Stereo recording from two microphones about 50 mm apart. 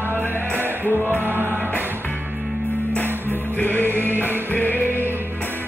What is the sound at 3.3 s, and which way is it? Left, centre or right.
Music, left.